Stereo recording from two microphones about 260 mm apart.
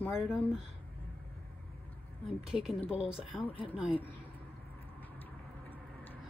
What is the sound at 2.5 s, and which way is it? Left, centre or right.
Speech, centre.